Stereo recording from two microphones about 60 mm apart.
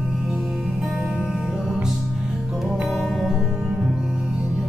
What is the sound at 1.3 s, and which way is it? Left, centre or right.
Music, centre.